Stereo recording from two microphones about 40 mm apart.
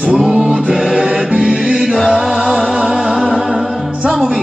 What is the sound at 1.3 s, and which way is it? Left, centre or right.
Music, right.